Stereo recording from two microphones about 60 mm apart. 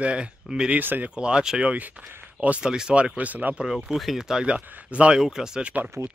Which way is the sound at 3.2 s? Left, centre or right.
Right.